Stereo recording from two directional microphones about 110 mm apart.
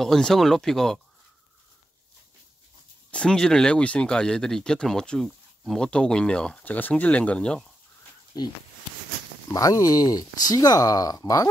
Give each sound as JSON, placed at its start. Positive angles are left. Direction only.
{"t": 0.0, "sound": "speech", "side_deg": 5}
{"t": 3.1, "sound": "speech", "side_deg": 10}
{"t": 8.3, "sound": "speech", "side_deg": 40}